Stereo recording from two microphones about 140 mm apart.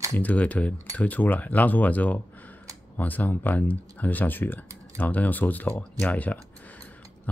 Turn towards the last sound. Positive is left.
turn(degrees=10)  # may be behind; listen again after turning